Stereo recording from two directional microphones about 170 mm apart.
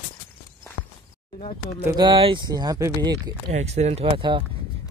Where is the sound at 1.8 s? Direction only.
25° right (ahead or behind).